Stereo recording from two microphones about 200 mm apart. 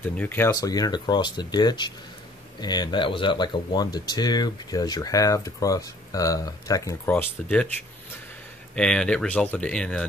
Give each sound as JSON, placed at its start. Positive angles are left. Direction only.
{"t": 0.0, "sound": "speech", "side_deg": 10}
{"t": 8.7, "sound": "speech", "side_deg": 5}